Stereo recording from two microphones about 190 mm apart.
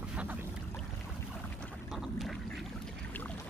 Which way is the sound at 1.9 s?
Centre (ahead or behind).